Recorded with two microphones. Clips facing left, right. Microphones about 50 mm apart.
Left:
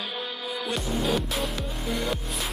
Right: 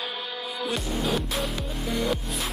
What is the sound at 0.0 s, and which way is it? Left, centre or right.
Music, centre.